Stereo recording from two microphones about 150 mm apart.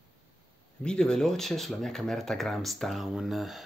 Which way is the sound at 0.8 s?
5° left (ahead or behind).